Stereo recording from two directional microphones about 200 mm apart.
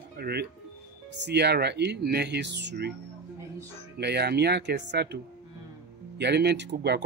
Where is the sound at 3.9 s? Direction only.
55° right (ahead or behind).